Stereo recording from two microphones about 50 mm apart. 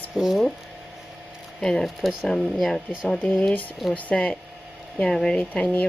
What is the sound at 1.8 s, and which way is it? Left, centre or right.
Speech, centre.